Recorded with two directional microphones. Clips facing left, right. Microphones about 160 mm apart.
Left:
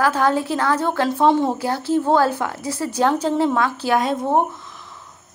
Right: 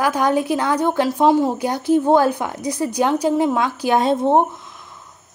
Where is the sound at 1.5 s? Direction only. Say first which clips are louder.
Right 3 dB; 15° right (ahead or behind).